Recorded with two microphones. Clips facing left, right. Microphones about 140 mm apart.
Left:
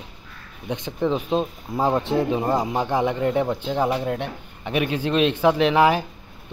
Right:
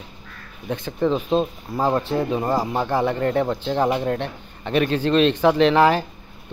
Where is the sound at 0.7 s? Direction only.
15° left (ahead or behind).